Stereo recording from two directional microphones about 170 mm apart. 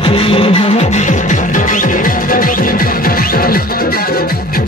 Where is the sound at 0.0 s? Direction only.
30° left (ahead or behind).